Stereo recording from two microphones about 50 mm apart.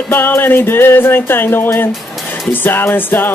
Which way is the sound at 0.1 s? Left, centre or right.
Left.